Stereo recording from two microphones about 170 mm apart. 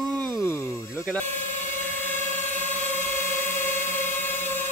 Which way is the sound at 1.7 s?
10° left (ahead or behind).